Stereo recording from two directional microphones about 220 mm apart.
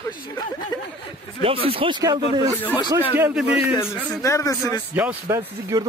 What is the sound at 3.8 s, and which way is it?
Speech, 10° left (ahead or behind).